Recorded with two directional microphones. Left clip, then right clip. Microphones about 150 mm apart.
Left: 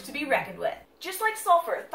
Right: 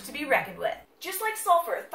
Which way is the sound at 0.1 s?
10° right (ahead or behind).